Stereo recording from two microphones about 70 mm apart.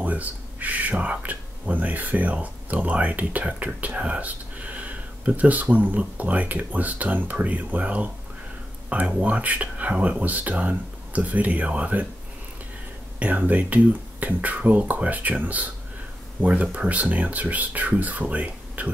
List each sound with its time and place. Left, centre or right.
0.0 s speech: right
13.2 s speech: right